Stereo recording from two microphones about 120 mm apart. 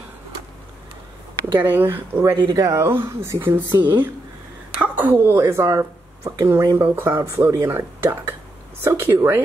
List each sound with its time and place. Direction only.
1.6 s speech: 15° right (ahead or behind)
2.4 s speech: 30° right (ahead or behind)